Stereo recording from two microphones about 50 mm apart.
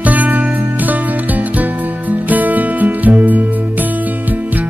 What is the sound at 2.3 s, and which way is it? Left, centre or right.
Music, right.